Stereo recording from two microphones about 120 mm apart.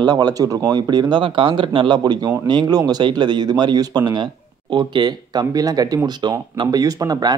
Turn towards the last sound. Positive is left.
turn(degrees=-30)  # may be behind; listen again after turning